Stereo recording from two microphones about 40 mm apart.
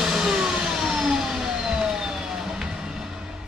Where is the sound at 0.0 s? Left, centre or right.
Centre.